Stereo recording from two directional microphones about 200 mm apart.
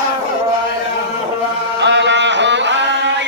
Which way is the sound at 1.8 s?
60° right (ahead or behind).